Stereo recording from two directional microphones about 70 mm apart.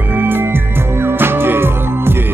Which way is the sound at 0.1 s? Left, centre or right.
Right.